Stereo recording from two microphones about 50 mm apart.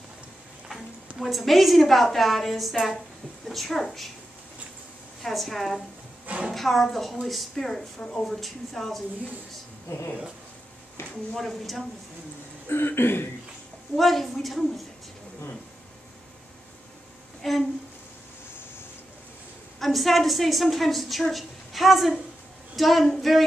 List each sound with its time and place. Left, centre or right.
1.2 s a woman's voice: centre
5.2 s a woman's voice: centre
6.2 s a sound: right
6.5 s a woman's voice: centre
9.8 s speech: left
11.3 s a woman's voice: centre
12.6 s throat clearing: left
13.9 s a woman's voice: centre
17.4 s speech: centre
19.8 s a woman's voice: centre